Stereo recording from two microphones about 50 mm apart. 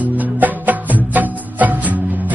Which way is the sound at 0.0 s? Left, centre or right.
Right.